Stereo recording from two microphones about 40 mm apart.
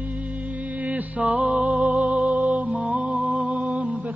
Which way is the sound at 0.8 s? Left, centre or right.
Right.